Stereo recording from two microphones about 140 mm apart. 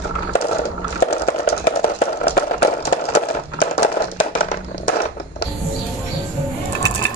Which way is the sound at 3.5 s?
70° left (ahead or behind).